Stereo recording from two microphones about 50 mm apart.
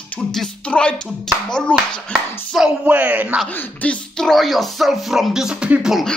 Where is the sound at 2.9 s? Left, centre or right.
Right.